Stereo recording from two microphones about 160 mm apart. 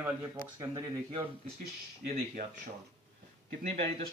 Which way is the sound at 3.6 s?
40° right (ahead or behind).